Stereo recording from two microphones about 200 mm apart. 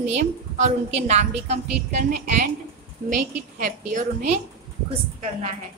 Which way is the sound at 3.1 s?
40° right (ahead or behind).